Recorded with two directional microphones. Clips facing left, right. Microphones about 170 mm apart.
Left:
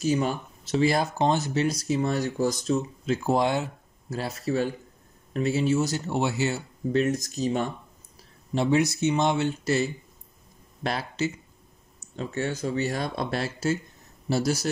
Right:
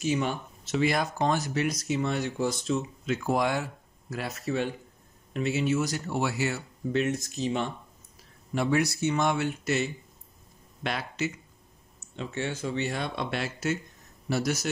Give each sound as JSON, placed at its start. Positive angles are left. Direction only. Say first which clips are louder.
{"t": 0.0, "sound": "speech", "louder": "left 3 dB", "side_deg": 40}
{"t": 6.9, "sound": "speech", "louder": "left 3 dB", "side_deg": 40}
{"t": 8.5, "sound": "speech", "louder": "left 3 dB", "side_deg": 25}